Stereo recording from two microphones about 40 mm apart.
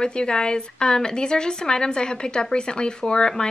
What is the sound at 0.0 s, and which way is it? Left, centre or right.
Speech, left.